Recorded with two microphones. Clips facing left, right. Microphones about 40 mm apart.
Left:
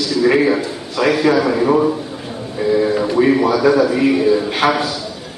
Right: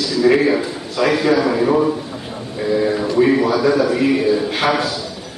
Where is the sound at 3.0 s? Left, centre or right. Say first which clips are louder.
Left 1 dB; centre.